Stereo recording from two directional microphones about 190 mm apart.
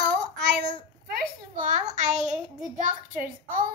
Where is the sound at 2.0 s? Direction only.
40° right (ahead or behind).